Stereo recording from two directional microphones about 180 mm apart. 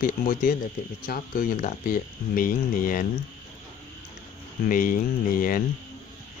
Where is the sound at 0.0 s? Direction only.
50° left (ahead or behind).